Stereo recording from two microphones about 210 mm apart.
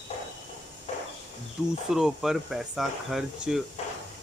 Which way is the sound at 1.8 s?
Centre (ahead or behind).